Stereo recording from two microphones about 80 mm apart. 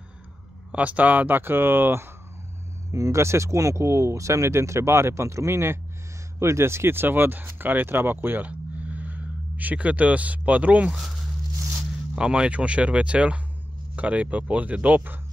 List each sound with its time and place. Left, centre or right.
0.7 s speech: centre
2.9 s speech: right; by 10.9 s centre
10.9 s speech: centre
12.2 s speech: centre